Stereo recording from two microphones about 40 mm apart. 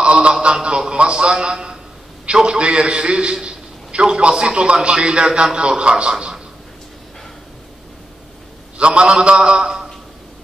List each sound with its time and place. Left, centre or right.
0.0 s a sound: right
2.2 s a man's voice: right
8.7 s a man's voice: right